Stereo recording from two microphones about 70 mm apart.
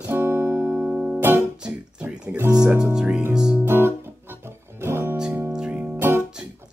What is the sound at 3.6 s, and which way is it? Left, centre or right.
Guitar, right.